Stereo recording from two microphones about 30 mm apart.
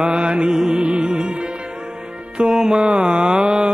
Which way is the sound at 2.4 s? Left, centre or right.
Centre.